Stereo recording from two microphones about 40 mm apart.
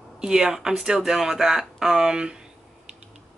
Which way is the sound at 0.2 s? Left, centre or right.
Centre.